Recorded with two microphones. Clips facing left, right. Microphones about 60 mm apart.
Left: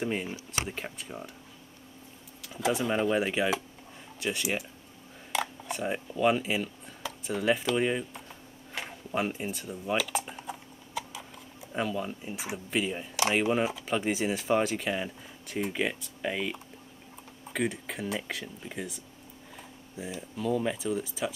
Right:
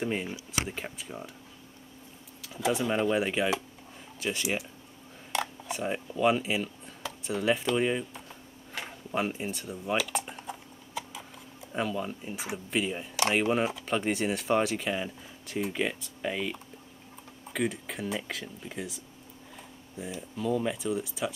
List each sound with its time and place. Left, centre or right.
0.0 s speech: centre
2.4 s speech: centre
8.7 s a sound: centre
11.7 s speech: centre